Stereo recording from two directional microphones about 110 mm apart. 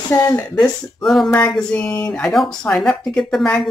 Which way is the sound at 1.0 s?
Centre (ahead or behind).